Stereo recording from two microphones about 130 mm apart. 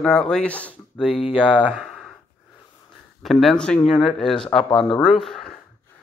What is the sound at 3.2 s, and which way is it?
Speech, centre (ahead or behind).